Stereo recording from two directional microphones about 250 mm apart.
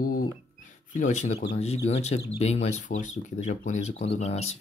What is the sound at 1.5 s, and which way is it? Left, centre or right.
Speech, left.